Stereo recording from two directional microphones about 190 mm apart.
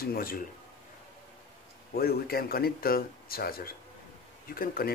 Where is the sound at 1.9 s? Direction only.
55° left (ahead or behind).